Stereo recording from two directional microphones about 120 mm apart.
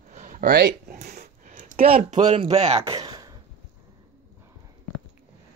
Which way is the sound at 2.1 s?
65° right (ahead or behind).